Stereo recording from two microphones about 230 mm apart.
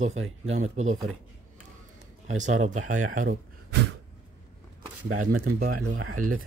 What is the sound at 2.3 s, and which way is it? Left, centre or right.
Speech, right.